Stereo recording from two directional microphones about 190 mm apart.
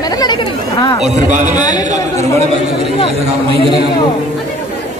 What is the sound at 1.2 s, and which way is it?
Speech, 40° right (ahead or behind).